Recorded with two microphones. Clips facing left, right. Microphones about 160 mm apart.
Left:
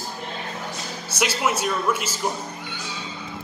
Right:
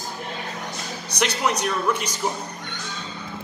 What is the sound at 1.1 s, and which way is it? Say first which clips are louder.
A man's voice: even; 5° left (ahead or behind).